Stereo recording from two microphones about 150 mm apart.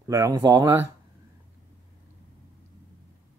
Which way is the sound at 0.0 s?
20° right (ahead or behind).